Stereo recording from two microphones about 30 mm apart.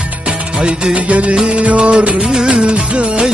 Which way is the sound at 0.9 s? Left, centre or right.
Right.